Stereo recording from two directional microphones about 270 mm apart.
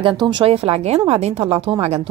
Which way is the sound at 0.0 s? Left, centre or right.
Centre.